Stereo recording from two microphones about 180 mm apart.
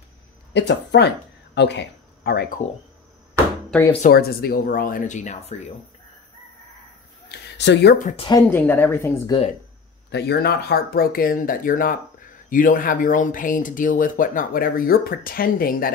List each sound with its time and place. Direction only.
0.5 s speech: 75° left (ahead or behind)
4.1 s speech: 60° left (ahead or behind); by 5.6 s 40° left (ahead or behind)
7.2 s speech: 70° left (ahead or behind)
8.4 s a woman's voice: 10° left (ahead or behind)
10.1 s speech: 65° left (ahead or behind)